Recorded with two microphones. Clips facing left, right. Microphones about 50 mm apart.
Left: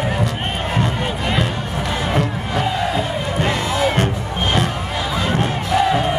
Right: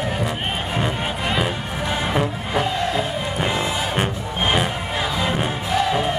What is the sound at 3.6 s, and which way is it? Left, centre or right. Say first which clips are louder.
Music: left 4 dB; centre.